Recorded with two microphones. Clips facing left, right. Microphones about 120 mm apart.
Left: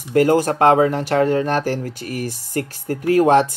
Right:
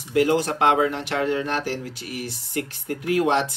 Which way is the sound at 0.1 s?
45° left (ahead or behind).